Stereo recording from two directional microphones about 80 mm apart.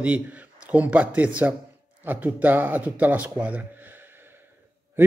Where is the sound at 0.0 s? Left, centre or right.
Centre.